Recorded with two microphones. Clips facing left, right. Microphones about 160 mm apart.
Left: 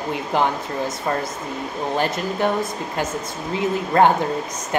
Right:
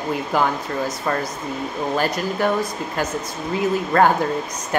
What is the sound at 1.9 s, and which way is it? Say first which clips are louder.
Speech: even; 20° left (ahead or behind).